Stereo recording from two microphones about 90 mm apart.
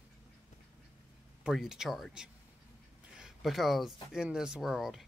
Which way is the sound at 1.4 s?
5° right (ahead or behind).